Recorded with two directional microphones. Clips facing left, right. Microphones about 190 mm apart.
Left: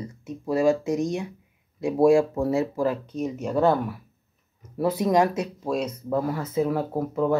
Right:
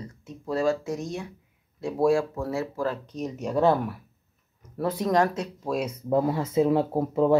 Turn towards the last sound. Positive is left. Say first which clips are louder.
# right 2 dB
turn(degrees=-25)  # may be behind; listen again after turning